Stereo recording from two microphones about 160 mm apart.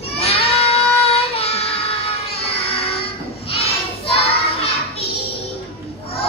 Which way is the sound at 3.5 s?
40° left (ahead or behind).